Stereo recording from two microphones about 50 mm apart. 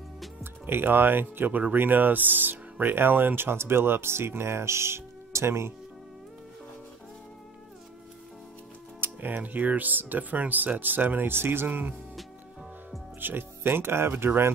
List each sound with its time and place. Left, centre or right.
0.4 s speech: right
9.0 s speech: right
13.2 s speech: right